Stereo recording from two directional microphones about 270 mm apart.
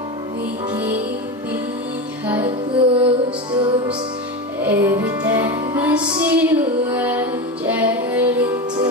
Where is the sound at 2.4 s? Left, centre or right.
Centre.